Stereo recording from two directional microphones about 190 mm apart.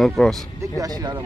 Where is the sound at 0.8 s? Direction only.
20° right (ahead or behind).